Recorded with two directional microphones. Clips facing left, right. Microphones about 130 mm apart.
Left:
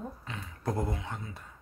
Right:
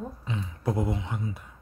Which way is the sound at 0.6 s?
10° right (ahead or behind).